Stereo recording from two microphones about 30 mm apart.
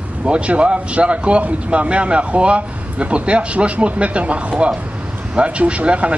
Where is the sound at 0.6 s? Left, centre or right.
Right.